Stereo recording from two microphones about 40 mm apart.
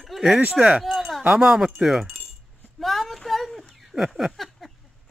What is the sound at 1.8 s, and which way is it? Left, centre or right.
Speech, centre.